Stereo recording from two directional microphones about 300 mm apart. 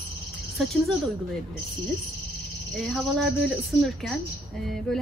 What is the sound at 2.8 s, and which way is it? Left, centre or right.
A woman's voice, centre.